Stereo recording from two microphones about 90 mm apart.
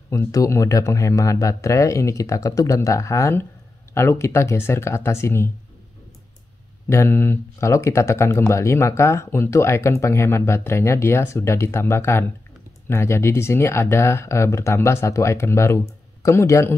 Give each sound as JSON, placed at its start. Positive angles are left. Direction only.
{"t": 0.3, "sound": "speech", "side_deg": 40}
{"t": 6.9, "sound": "speech", "side_deg": 30}